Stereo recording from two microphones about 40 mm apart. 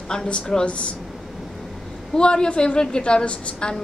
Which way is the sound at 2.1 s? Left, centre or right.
Left.